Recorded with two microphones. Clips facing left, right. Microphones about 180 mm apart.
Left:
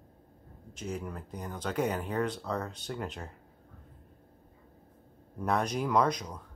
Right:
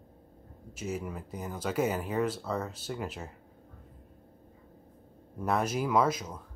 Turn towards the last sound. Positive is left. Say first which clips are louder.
# even
turn(degrees=-5)  # may be behind; listen again after turning